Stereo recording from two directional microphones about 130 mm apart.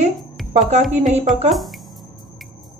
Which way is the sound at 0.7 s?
65° right (ahead or behind).